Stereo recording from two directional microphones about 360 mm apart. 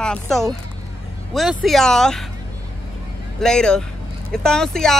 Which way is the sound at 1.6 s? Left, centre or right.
Centre.